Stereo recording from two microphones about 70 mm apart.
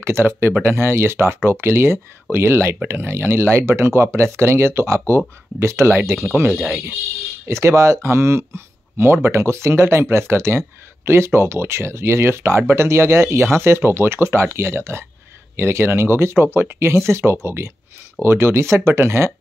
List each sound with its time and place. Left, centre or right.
0.0 s speech: right
7.6 s speech: right